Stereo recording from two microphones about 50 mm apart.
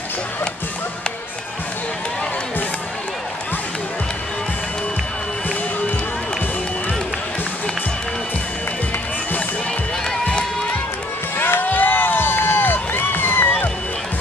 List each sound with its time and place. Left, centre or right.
11.3 s run: left